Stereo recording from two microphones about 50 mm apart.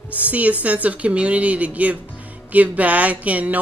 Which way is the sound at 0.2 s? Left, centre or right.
Right.